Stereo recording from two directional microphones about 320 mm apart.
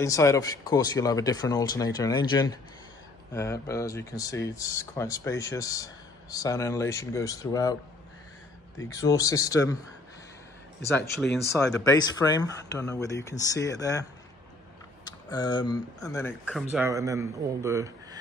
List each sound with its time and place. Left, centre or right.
0.0 s speech: centre
8.7 s speech: centre
11.2 s speech: left
11.6 s speech: centre
15.0 s speech: centre
16.7 s speech: centre